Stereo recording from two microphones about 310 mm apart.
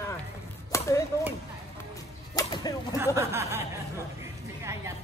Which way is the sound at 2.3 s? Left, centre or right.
Centre.